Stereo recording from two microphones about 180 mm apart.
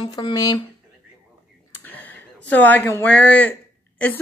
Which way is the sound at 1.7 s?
10° left (ahead or behind).